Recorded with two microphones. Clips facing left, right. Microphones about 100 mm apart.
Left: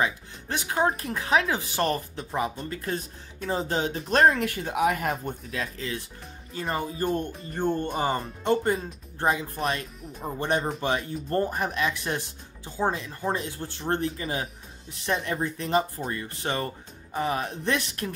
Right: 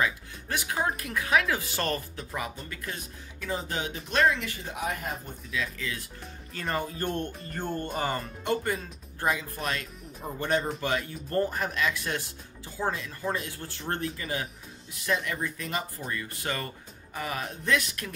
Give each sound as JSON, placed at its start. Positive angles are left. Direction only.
{"t": 0.0, "sound": "speech", "side_deg": 25}
{"t": 4.1, "sound": "speech", "side_deg": 45}
{"t": 4.7, "sound": "speech", "side_deg": 70}
{"t": 5.8, "sound": "speech", "side_deg": 30}
{"t": 6.5, "sound": "speech", "side_deg": 15}